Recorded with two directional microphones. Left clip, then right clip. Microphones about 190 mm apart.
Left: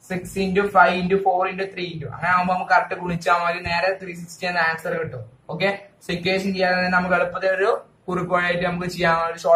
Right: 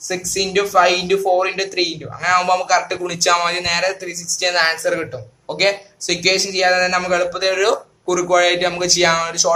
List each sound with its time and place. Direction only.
0.1 s speech: 60° right (ahead or behind)